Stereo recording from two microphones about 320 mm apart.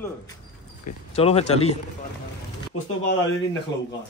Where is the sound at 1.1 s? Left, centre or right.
Centre.